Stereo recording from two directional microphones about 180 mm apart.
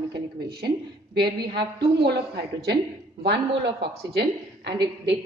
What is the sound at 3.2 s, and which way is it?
Speech, 65° right (ahead or behind).